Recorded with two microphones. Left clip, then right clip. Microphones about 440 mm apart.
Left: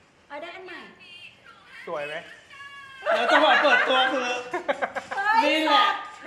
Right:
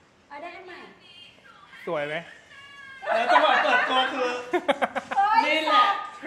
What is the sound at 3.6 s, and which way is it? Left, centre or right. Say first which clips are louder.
Speech: left 2 dB; left.